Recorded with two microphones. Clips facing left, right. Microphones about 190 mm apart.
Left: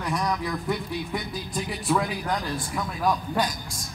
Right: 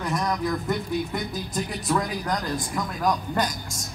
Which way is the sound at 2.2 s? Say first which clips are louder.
Right 1 dB; 5° left (ahead or behind).